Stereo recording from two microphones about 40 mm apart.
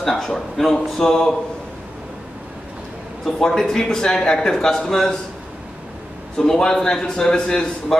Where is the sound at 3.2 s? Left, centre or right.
Centre.